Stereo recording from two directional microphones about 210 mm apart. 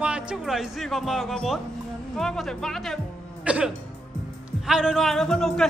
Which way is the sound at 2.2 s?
Centre (ahead or behind).